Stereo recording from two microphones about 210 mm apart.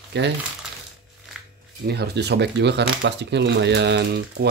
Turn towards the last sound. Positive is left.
turn(degrees=-55)  # may be behind; listen again after turning